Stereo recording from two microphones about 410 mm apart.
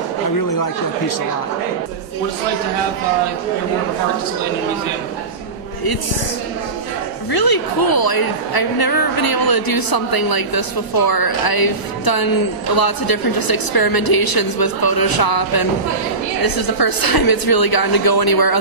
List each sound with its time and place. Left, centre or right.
0.4 s speech: left
7.3 s a woman's voice: left